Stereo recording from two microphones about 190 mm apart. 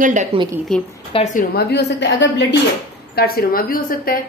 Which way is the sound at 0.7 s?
Centre (ahead or behind).